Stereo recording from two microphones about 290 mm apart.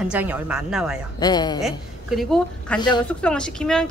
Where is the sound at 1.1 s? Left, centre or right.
Centre.